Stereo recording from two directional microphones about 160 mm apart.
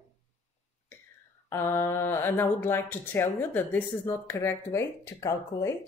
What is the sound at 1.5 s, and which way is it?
Speech, 15° left (ahead or behind).